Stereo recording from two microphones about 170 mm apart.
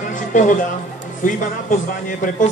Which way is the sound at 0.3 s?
50° left (ahead or behind).